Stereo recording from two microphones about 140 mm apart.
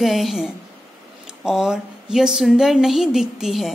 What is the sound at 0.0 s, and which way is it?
A woman's voice, centre (ahead or behind).